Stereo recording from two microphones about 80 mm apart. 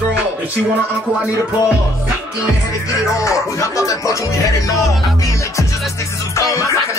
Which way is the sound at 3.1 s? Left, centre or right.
Left.